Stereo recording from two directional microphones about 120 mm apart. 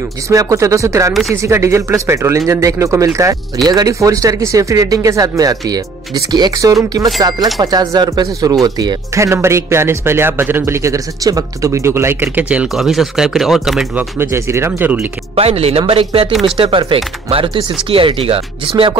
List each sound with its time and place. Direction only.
0.3 s speech: 25° right (ahead or behind); by 13.8 s centre (ahead or behind)
13.9 s speech: 20° right (ahead or behind)
15.3 s speech: 55° right (ahead or behind)